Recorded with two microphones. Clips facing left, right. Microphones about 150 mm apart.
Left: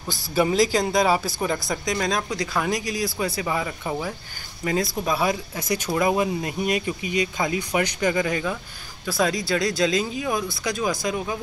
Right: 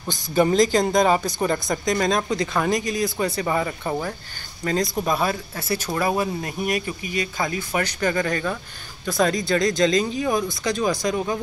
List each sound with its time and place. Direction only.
0.3 s speech: 5° left (ahead or behind)